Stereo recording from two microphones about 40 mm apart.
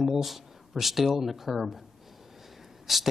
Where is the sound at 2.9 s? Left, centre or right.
Centre.